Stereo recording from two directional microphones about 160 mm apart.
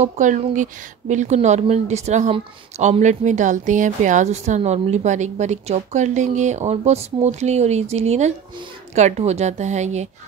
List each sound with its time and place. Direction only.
0.0 s a woman's voice: 50° right (ahead or behind)